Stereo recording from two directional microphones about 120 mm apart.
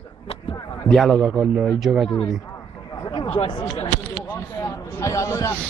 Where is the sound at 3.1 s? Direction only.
40° left (ahead or behind).